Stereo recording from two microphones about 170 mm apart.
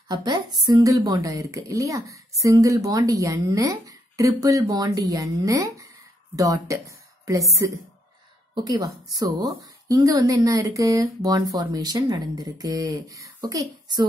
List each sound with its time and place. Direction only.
0.1 s a woman's voice: 25° right (ahead or behind)
8.6 s a woman's voice: 20° right (ahead or behind)